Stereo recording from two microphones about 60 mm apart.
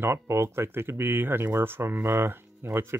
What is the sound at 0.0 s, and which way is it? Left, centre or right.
Speech, right.